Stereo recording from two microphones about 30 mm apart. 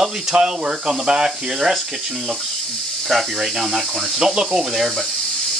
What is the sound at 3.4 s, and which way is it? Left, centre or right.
Speech, centre.